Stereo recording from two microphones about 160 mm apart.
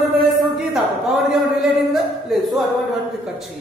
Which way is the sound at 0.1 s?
Centre (ahead or behind).